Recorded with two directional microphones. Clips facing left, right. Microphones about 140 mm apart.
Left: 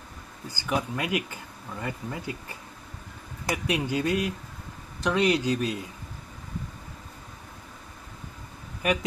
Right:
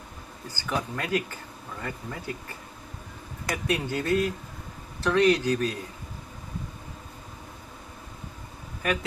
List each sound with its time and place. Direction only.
0.5 s speech: 15° left (ahead or behind)
3.6 s speech: 15° left (ahead or behind)
8.8 s speech: 15° left (ahead or behind)